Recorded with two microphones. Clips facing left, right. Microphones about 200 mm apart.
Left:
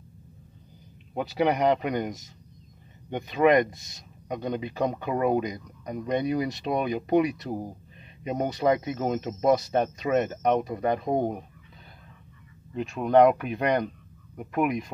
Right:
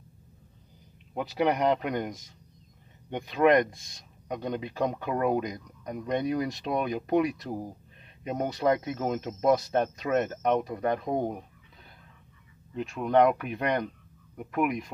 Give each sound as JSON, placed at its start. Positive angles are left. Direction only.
{"t": 1.1, "sound": "speech", "side_deg": 5}
{"t": 11.1, "sound": "speech", "side_deg": 15}
{"t": 12.7, "sound": "speech", "side_deg": 0}